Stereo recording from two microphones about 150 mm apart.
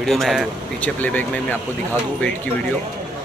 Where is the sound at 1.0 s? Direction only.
10° left (ahead or behind).